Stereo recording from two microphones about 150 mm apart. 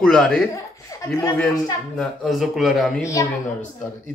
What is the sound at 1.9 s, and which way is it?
Speech, centre (ahead or behind).